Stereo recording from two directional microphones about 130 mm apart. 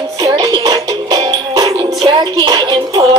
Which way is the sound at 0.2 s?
30° right (ahead or behind).